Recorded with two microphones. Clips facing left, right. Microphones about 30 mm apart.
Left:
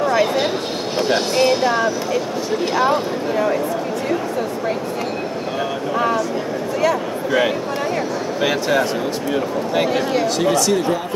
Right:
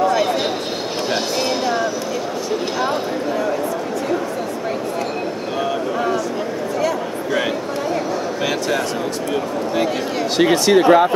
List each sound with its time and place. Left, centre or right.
0.0 s a sound: centre
1.0 s speech: centre
5.6 s speech: centre
10.3 s speech: right